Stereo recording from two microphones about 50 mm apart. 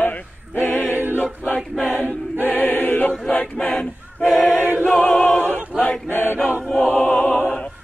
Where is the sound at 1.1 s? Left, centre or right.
Left.